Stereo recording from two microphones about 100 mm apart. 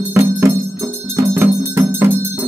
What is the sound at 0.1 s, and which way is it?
Music, 25° right (ahead or behind).